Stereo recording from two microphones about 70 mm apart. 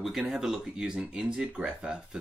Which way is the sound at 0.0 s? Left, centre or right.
Centre.